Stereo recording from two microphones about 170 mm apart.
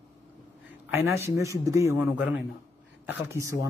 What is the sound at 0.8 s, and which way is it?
Speech, 15° right (ahead or behind).